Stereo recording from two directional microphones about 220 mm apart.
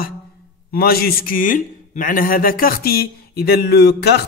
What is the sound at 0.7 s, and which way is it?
A man's voice, 45° left (ahead or behind).